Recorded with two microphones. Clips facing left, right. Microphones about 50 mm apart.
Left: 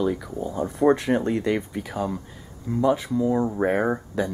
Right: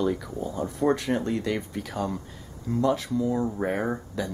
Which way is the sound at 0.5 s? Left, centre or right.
Centre.